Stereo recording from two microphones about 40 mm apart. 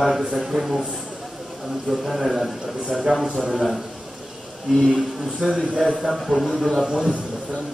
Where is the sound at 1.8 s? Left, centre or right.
Centre.